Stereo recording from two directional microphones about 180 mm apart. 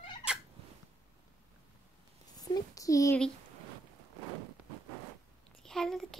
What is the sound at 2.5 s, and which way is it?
Speech, 20° left (ahead or behind).